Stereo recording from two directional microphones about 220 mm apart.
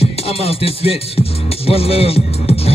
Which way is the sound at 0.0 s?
25° left (ahead or behind).